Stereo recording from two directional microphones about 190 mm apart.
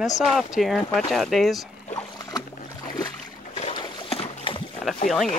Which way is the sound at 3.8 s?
25° left (ahead or behind).